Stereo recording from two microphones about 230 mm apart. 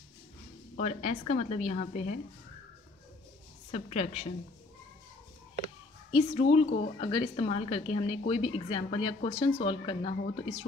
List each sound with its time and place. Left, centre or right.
0.7 s speech: left
3.7 s speech: left
6.1 s speech: left